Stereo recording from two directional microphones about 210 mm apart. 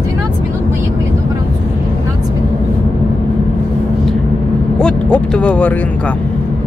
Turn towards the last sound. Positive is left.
turn(degrees=5)  # may be behind; listen again after turning